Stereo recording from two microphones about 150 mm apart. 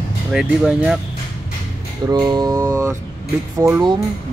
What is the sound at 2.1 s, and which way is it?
Mantra, 30° right (ahead or behind).